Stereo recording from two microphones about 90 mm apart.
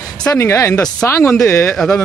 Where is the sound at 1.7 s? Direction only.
5° left (ahead or behind).